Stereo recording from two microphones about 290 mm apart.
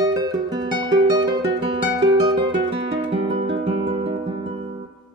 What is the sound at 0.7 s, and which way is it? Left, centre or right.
Music, centre.